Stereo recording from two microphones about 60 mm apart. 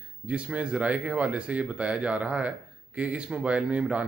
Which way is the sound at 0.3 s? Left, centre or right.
Centre.